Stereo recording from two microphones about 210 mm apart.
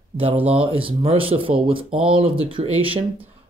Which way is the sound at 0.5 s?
25° right (ahead or behind).